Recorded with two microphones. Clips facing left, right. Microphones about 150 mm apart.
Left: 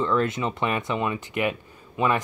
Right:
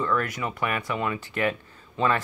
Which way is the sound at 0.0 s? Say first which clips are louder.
Left 3 dB; 25° left (ahead or behind).